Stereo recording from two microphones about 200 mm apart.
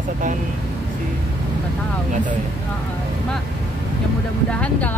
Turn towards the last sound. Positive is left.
turn(degrees=5)  # may be behind; listen again after turning